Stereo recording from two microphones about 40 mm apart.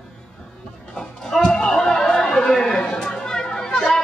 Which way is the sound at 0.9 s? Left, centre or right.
Centre.